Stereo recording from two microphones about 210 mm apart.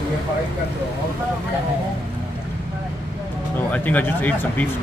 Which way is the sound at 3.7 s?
10° left (ahead or behind).